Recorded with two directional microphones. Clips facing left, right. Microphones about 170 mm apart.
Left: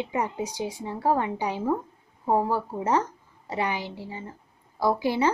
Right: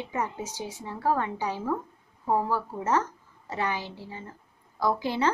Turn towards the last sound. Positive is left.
turn(degrees=10)  # may be behind; listen again after turning